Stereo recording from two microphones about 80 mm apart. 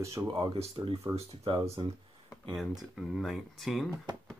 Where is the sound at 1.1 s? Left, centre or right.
Right.